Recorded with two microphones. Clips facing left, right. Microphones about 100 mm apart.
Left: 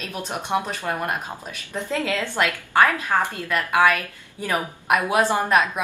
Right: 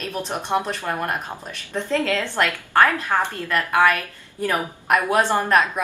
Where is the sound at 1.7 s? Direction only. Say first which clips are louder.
Right 3 dB; 10° left (ahead or behind).